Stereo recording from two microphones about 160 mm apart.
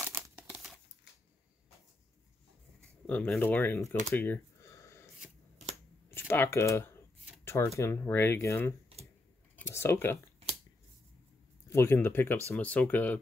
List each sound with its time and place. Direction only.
0.5 s crumpling: centre (ahead or behind)
3.1 s speech: 10° left (ahead or behind)
4.1 s a sound: 15° left (ahead or behind)
6.1 s speech: 15° left (ahead or behind)
11.6 s speech: 15° left (ahead or behind)